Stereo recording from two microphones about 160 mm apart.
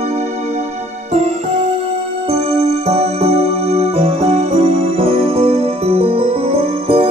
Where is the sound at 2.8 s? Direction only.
40° right (ahead or behind).